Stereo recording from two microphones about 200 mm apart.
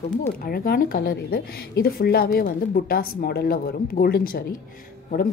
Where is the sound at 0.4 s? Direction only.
45° left (ahead or behind).